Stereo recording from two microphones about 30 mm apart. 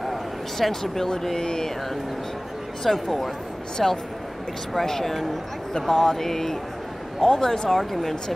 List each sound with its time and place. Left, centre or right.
0.6 s speech: centre
2.8 s speech: centre